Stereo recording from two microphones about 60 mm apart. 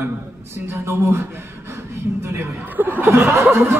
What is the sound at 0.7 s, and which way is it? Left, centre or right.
Speech, right.